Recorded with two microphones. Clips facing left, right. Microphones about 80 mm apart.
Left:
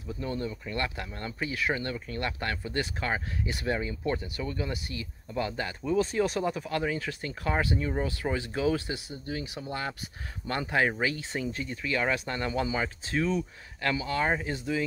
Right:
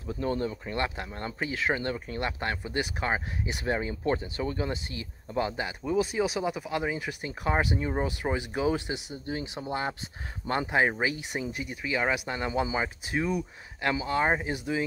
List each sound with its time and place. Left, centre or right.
0.1 s speech: right